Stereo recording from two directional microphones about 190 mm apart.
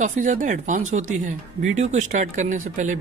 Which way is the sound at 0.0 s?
40° right (ahead or behind).